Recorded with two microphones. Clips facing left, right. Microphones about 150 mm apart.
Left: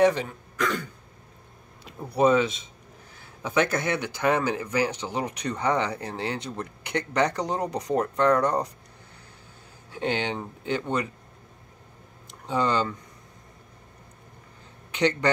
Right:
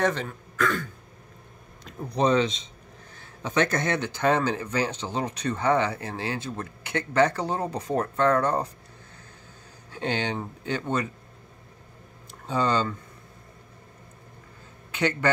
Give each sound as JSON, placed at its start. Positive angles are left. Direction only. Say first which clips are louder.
{"t": 0.0, "sound": "speech", "louder": "left 5 dB", "side_deg": 10}
{"t": 1.9, "sound": "speech", "louder": "left 2 dB", "side_deg": 5}
{"t": 9.8, "sound": "speech", "louder": "left 1 dB", "side_deg": 15}
{"t": 12.4, "sound": "speech", "louder": "even", "side_deg": 15}
{"t": 14.9, "sound": "speech", "louder": "left 2 dB", "side_deg": 20}